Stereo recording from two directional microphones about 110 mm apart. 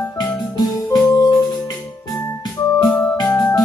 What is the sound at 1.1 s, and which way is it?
Music, 35° left (ahead or behind).